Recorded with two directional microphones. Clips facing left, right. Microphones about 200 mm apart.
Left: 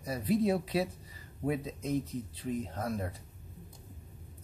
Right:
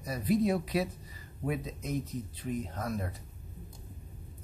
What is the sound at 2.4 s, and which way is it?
Speech, 30° left (ahead or behind).